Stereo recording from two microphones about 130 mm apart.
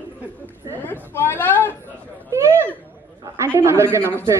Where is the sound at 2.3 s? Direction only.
20° right (ahead or behind).